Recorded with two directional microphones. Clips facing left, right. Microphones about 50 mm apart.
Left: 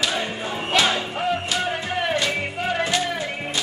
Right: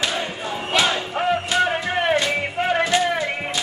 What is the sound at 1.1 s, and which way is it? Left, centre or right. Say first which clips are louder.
Music: right 4 dB; right.